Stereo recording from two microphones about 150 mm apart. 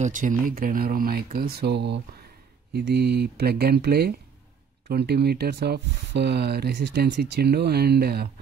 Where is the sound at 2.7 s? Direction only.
90° right.